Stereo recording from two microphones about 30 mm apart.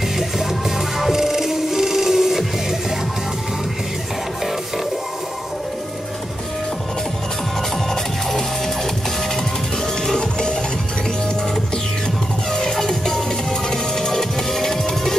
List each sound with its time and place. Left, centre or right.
0.9 s music: centre
10.0 s music: left
12.5 s music: centre